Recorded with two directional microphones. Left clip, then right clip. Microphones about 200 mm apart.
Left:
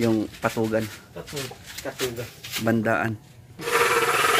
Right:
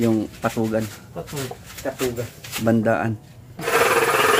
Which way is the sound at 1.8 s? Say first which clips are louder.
Right 6 dB; 25° right (ahead or behind).